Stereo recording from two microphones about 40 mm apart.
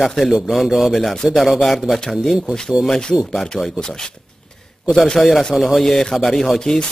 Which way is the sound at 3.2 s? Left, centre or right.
Centre.